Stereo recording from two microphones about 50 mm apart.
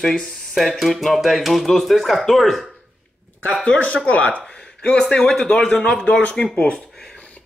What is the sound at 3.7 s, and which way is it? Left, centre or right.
Speech, left.